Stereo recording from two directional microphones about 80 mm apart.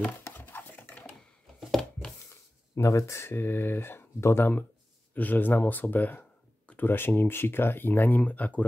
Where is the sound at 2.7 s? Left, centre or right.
Left.